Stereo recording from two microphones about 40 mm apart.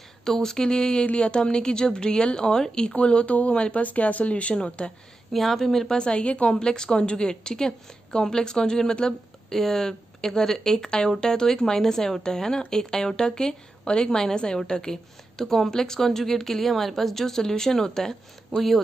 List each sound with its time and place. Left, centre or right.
0.2 s a woman's voice: centre
3.0 s speech: left
5.3 s a woman's voice: centre
5.9 s speech: left
6.6 s a woman's voice: centre